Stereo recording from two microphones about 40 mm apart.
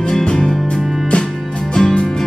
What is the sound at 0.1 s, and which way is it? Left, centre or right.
Music, centre.